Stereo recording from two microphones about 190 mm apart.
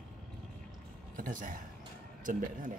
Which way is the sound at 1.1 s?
45° right (ahead or behind).